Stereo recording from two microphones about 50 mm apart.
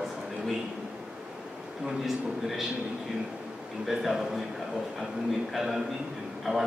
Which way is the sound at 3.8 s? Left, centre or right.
Centre.